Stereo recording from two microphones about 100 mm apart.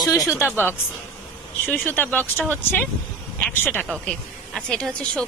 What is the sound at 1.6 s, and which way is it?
Speech, 20° left (ahead or behind).